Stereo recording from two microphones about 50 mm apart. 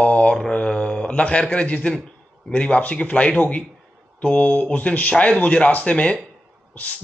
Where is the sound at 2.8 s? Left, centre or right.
Left.